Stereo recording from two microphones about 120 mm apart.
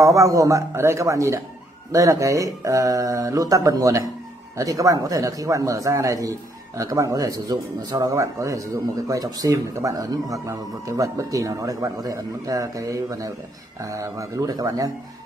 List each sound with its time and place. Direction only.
0.0 s speech: 30° right (ahead or behind)